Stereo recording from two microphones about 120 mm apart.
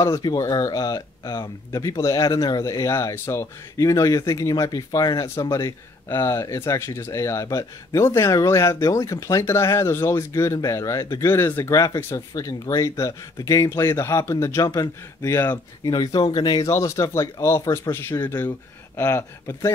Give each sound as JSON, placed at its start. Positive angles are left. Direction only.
{"t": 0.0, "sound": "speech", "side_deg": 30}
{"t": 15.5, "sound": "speech", "side_deg": 35}
{"t": 16.6, "sound": "speech", "side_deg": 25}